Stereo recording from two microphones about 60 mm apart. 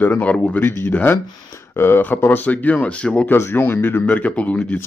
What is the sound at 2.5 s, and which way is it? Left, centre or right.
Speech, left.